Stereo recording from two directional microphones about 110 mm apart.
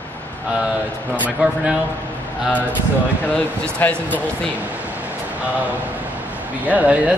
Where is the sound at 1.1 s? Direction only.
15° right (ahead or behind).